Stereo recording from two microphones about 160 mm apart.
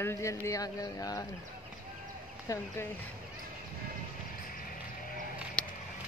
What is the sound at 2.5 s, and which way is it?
Speech, 20° left (ahead or behind).